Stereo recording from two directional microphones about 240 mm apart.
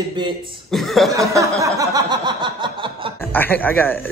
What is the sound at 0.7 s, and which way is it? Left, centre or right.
Speech, centre.